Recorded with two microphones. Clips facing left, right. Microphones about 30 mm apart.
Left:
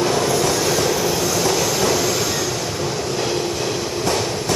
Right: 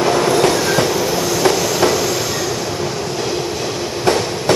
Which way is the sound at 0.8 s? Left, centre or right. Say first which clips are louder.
Right 2 dB; centre.